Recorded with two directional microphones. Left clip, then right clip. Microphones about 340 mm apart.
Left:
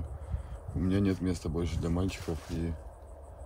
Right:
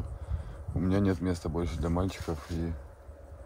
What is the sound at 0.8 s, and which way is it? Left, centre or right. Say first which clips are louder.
Speech: right 2 dB; centre.